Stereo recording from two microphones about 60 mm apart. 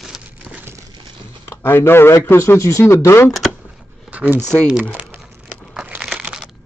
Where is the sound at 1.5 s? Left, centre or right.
Left.